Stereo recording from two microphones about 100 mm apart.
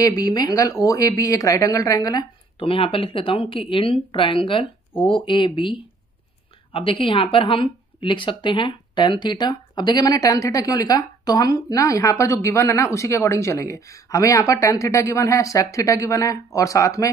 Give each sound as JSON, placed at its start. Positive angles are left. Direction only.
{"t": 0.0, "sound": "speech", "side_deg": 40}
{"t": 2.6, "sound": "speech", "side_deg": 65}